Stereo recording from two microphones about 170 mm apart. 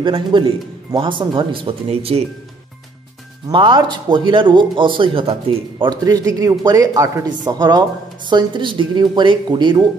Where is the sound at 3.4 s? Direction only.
25° right (ahead or behind).